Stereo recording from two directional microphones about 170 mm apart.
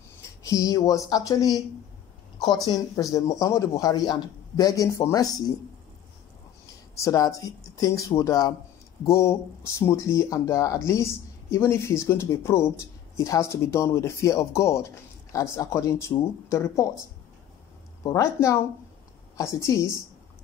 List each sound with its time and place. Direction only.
0.4 s a man's voice: 20° left (ahead or behind)
3.0 s a man's voice: 20° left (ahead or behind)
6.6 s speech: 20° left (ahead or behind)
18.0 s a man's voice: 20° left (ahead or behind)